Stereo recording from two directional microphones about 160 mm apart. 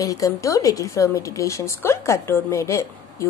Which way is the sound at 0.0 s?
20° left (ahead or behind).